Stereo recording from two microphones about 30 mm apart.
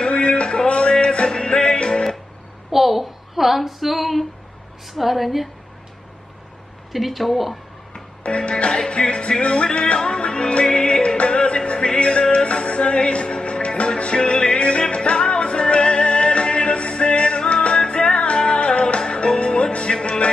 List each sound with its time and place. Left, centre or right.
0.1 s a sound: left
0.7 s music: left
2.7 s female singing: centre
4.9 s speech: centre
6.9 s speech: centre
8.2 s music: left